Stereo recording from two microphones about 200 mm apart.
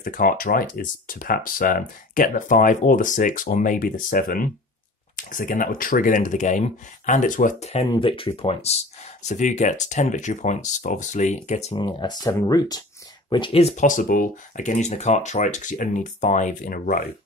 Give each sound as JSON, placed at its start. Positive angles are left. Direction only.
{"t": 0.0, "sound": "speech", "side_deg": 45}
{"t": 7.9, "sound": "speech", "side_deg": 25}